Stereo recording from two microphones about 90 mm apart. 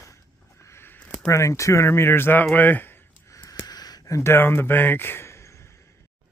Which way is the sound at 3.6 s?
50° left (ahead or behind).